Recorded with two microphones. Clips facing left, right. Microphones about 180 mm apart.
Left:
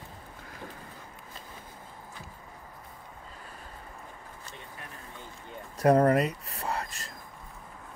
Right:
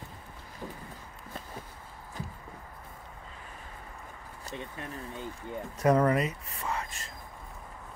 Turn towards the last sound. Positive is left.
turn(degrees=40)  # may be behind; listen again after turning